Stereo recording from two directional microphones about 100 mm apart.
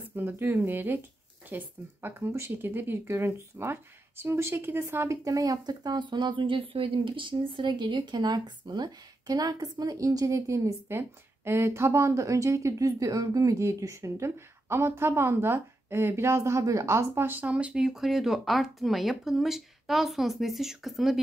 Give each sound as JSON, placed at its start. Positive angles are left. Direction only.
{"t": 0.1, "sound": "speech", "side_deg": -20}